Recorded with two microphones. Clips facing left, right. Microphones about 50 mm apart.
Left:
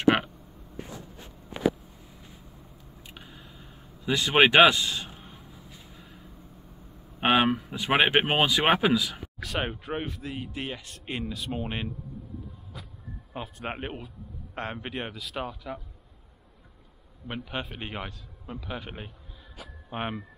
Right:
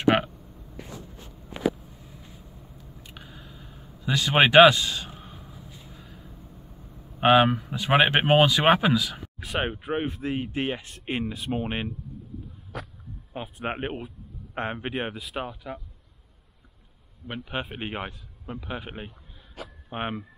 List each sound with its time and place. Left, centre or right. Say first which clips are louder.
4.0 s speech: even; centre
7.2 s speech: right 4 dB; centre
9.4 s speech: right 2 dB; centre
12.7 s speech: right 10 dB; right
13.3 s speech: right 3 dB; centre
17.3 s a man's voice: right 2 dB; centre